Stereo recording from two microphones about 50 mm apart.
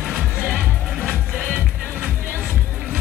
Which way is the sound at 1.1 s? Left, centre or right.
Centre.